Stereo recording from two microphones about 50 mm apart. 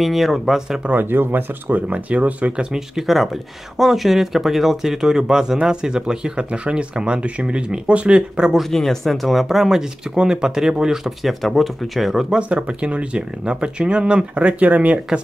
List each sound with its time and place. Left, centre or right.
0.0 s speech: centre
0.9 s speech: right
1.9 s speech: right
2.5 s speech: centre
3.0 s speech: centre
8.5 s speech: centre
11.2 s speech: centre
12.4 s speech: right